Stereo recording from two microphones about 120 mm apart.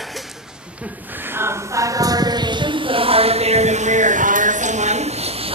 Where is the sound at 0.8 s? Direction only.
15° right (ahead or behind).